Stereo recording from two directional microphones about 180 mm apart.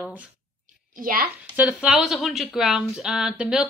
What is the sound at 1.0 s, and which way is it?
Speech, 50° right (ahead or behind).